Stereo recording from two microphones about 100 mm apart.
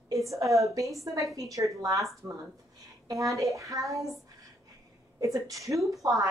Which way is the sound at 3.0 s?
35° right (ahead or behind).